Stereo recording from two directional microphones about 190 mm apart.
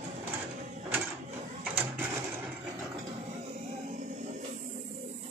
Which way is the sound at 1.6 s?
10° right (ahead or behind).